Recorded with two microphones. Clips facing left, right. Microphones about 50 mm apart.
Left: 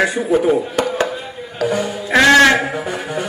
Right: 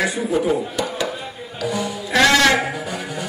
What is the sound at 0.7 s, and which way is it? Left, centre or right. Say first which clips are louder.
Chop: left 5 dB; left.